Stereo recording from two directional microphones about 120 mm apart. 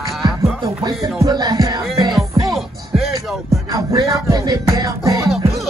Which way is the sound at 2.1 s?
Centre (ahead or behind).